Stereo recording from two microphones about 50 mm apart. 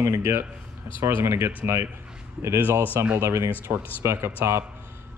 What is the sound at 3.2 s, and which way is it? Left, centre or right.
Speech, right.